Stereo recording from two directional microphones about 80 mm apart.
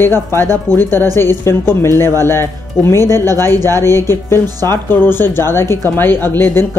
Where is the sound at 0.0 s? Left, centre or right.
Left.